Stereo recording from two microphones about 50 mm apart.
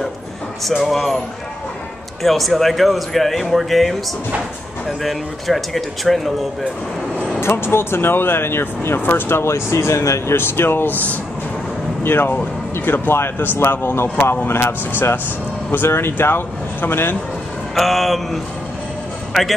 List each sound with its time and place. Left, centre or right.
0.7 s speech: centre
2.2 s speech: centre
7.3 s speech: left
9.4 s speech: left
10.3 s speech: left
12.0 s speech: left
17.7 s speech: centre